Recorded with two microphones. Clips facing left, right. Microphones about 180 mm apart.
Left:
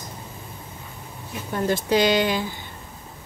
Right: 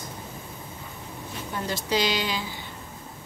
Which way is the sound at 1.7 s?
55° left (ahead or behind).